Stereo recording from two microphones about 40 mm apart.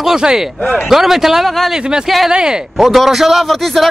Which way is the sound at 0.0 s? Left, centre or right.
Centre.